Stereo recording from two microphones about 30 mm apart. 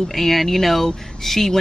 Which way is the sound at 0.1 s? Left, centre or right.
Centre.